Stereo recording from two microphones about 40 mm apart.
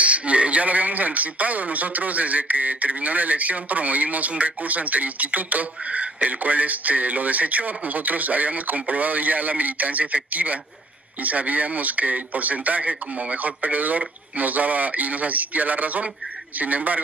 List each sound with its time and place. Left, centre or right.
0.0 s speech: right